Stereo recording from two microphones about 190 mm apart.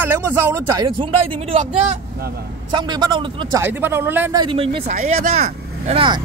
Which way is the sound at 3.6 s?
10° right (ahead or behind).